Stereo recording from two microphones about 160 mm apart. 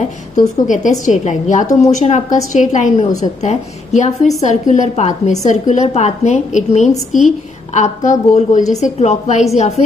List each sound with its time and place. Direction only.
0.7 s a woman's voice: 50° left (ahead or behind)